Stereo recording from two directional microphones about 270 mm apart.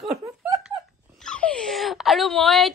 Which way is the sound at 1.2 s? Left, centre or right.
Centre.